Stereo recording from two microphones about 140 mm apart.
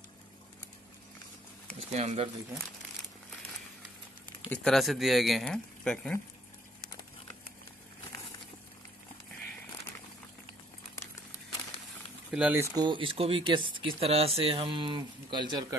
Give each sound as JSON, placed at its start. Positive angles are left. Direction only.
{"t": 1.8, "sound": "speech", "side_deg": -50}
{"t": 4.5, "sound": "speech", "side_deg": 0}
{"t": 12.3, "sound": "speech", "side_deg": -10}
{"t": 12.7, "sound": "speech", "side_deg": -35}